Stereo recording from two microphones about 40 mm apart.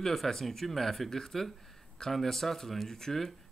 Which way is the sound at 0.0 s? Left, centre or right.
Centre.